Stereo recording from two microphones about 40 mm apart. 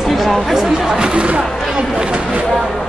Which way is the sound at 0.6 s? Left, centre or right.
Centre.